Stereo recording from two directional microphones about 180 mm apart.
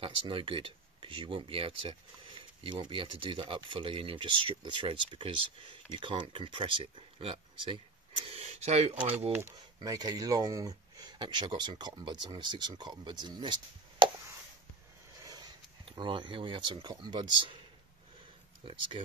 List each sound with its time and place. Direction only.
0.0 s speech: 30° right (ahead or behind)
9.3 s speech: 15° right (ahead or behind)
15.2 s speech: 25° right (ahead or behind)
18.7 s speech: 30° right (ahead or behind)